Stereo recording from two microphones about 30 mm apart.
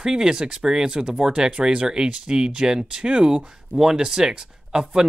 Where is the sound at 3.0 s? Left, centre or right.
Right.